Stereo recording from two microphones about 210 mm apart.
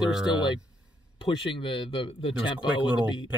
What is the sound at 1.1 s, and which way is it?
Speech, 25° left (ahead or behind).